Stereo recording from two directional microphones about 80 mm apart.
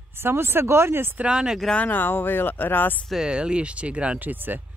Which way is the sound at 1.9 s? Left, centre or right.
Left.